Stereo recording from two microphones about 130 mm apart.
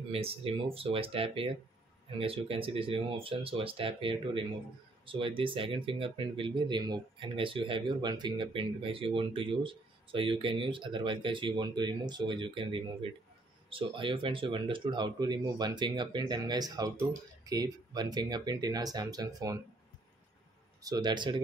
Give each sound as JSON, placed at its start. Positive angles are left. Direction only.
{"t": 0.1, "sound": "speech", "side_deg": -50}
{"t": 20.8, "sound": "speech", "side_deg": -30}